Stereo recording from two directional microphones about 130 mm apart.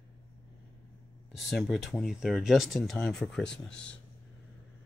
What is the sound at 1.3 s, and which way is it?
Speech, centre (ahead or behind).